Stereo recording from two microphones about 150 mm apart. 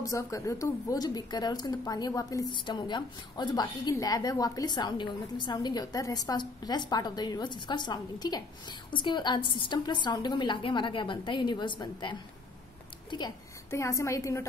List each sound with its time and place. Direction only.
0.0 s a woman's voice: 20° left (ahead or behind)
13.7 s a woman's voice: 20° left (ahead or behind)